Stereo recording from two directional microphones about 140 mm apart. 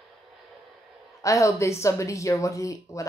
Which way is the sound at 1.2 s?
20° left (ahead or behind).